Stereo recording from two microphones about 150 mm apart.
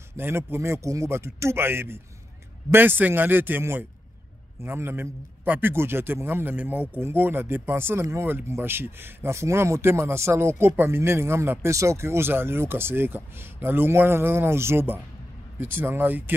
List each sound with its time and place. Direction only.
0.2 s a man's voice: 15° right (ahead or behind)